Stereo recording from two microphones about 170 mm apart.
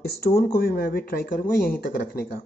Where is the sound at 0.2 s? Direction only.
65° left (ahead or behind).